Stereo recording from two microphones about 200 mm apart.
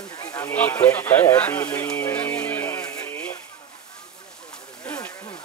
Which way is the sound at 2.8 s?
5° left (ahead or behind).